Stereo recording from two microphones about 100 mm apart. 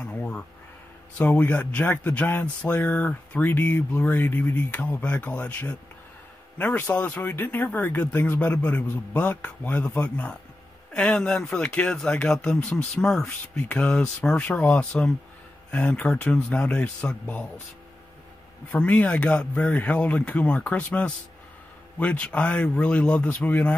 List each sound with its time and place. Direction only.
0.0 s a sound: 10° left (ahead or behind)
1.1 s speech: 15° left (ahead or behind)
18.7 s speech: 15° left (ahead or behind)